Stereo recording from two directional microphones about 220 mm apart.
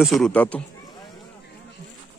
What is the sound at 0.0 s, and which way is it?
Speech, centre (ahead or behind).